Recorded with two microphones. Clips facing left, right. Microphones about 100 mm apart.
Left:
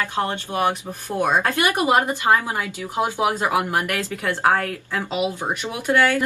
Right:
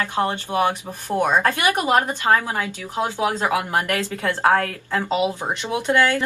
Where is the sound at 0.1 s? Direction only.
20° right (ahead or behind).